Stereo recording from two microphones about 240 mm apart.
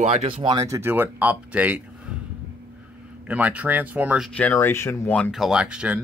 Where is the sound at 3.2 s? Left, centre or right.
Centre.